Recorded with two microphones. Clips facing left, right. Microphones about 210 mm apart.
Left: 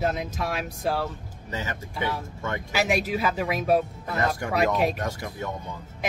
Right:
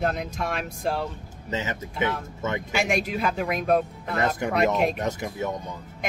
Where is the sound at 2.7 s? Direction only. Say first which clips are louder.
Left 2 dB; 5° left (ahead or behind).